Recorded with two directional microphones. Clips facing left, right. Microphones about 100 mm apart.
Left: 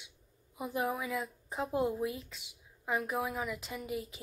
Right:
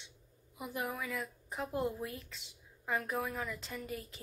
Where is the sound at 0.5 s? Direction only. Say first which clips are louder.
Left 5 dB; 25° left (ahead or behind).